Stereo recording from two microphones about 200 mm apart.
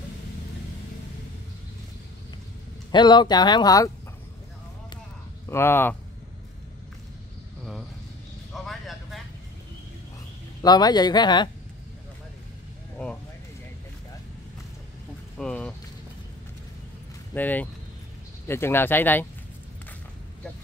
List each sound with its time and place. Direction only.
2.9 s speech: 25° left (ahead or behind)
5.5 s speech: 10° left (ahead or behind)
8.6 s vehicle: centre (ahead or behind)
10.6 s speech: 20° left (ahead or behind)
12.9 s a sound: 5° left (ahead or behind)
15.3 s a sound: 5° left (ahead or behind)
17.3 s speech: 10° left (ahead or behind)